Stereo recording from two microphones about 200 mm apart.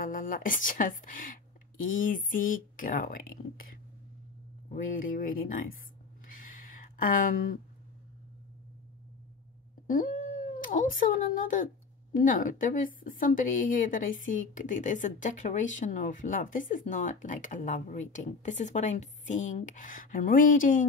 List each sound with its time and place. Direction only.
0.0 s a woman's voice: 45° left (ahead or behind)
4.7 s speech: 45° left (ahead or behind)
6.3 s a sound: 45° left (ahead or behind)
9.8 s cat: 40° left (ahead or behind)
10.6 s a woman's voice: 45° left (ahead or behind)